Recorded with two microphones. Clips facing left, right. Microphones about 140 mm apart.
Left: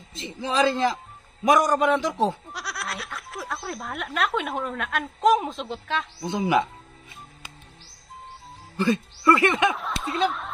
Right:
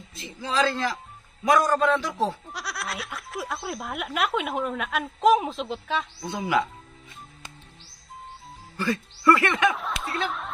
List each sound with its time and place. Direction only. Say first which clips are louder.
0.1 s a man's voice: left 2 dB; 20° left (ahead or behind)
2.4 s speech: even; centre (ahead or behind)
6.2 s a man's voice: left 4 dB; 20° left (ahead or behind)
8.7 s speech: left 4 dB; 20° left (ahead or behind)
9.8 s speech: left 1 dB; centre (ahead or behind)